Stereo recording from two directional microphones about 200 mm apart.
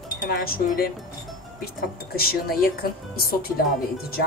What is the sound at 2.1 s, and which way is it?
Speech, 50° left (ahead or behind).